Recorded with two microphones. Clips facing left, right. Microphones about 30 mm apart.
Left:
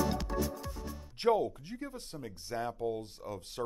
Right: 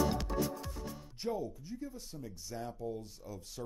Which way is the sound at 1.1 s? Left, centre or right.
Left.